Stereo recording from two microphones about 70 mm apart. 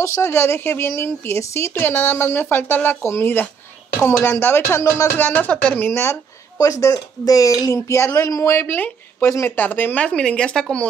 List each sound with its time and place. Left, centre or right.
0.0 s a woman's voice: left
5.1 s speech: left
5.8 s a woman's voice: left
6.6 s speech: left
8.5 s a woman's voice: left
9.6 s speech: left